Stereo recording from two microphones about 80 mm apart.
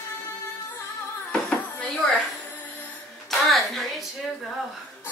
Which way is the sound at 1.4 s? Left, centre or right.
Centre.